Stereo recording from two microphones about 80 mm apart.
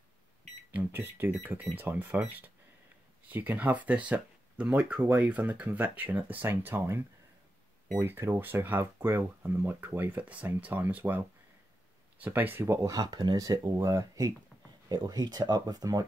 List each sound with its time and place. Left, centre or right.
0.7 s speech: right
8.0 s speech: right
12.9 s speech: right
13.7 s speech: right
14.9 s speech: right